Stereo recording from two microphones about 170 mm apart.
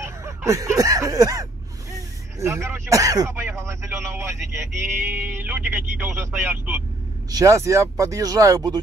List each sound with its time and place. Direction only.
0.0 s speech: 15° right (ahead or behind)
7.2 s speech: 20° right (ahead or behind)